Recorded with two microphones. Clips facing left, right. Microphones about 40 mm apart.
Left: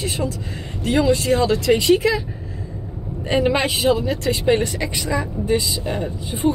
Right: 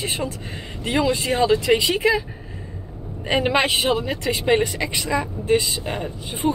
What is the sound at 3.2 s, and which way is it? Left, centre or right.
Speech, right.